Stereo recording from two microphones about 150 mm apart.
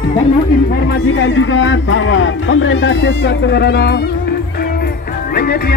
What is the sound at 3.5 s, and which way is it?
Speech, 90° left.